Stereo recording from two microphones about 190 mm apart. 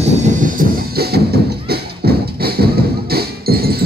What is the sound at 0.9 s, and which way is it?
Music, 55° right (ahead or behind).